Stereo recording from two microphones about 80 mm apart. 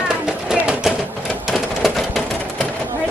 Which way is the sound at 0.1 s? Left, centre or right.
Centre.